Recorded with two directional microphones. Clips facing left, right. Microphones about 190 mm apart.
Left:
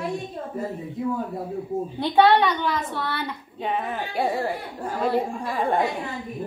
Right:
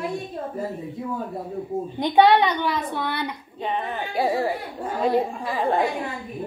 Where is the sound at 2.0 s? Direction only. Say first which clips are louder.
Right 1 dB; 15° right (ahead or behind).